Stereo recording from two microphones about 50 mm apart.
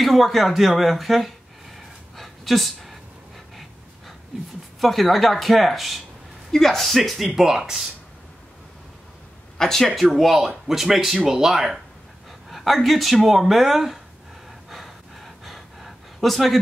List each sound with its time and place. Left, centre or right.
0.0 s speech: centre
2.1 s a sound: centre
4.7 s speech: centre
9.6 s speech: centre
14.7 s gasp: centre